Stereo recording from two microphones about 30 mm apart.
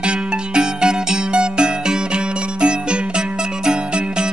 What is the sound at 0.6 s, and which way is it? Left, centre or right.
Music, right.